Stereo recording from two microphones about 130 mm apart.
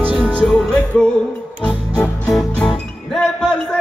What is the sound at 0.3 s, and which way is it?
Music, 5° left (ahead or behind).